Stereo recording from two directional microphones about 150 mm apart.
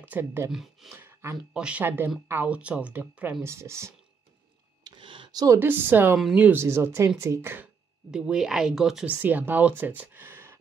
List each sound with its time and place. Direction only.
0.0 s speech: 15° right (ahead or behind)
0.5 s speech: centre (ahead or behind)
0.9 s a sound: 15° right (ahead or behind)
1.5 s speech: 5° right (ahead or behind)
4.8 s a sound: 30° right (ahead or behind)
5.6 s speech: 15° right (ahead or behind)
8.1 s speech: 5° right (ahead or behind)